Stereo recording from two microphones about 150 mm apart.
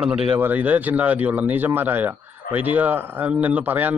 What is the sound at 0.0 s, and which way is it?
A man's voice, 5° right (ahead or behind).